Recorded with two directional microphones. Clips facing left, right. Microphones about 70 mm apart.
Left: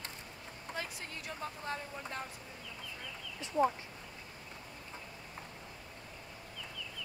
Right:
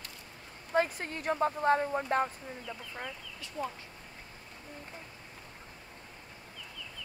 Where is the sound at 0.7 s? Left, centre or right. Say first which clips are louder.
Right 14 dB; right.